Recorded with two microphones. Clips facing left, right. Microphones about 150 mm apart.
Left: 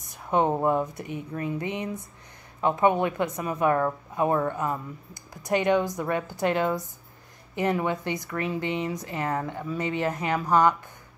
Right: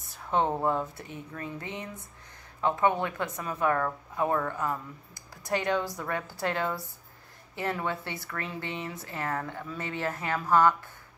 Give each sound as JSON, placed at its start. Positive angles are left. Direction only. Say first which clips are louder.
{"t": 0.0, "sound": "speech", "louder": "left 4 dB", "side_deg": 15}